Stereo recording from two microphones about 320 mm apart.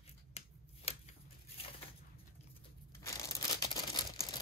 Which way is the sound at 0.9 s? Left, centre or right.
Centre.